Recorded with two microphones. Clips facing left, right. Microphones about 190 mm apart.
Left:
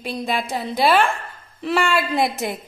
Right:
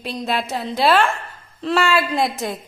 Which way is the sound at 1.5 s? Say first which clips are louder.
Right 2 dB; 10° left (ahead or behind).